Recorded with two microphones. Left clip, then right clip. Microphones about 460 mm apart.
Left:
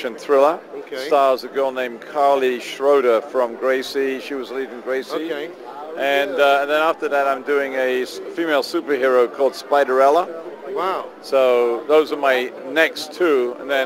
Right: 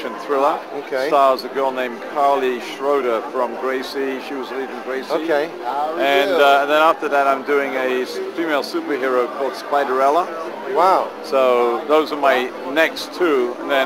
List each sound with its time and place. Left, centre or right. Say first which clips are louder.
0.0 s a sound: left 3 dB; left
1.0 s speech: right 1 dB; left
11.3 s speech: even; left